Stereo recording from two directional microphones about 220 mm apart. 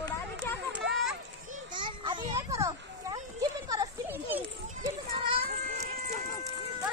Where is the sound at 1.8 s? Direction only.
20° right (ahead or behind).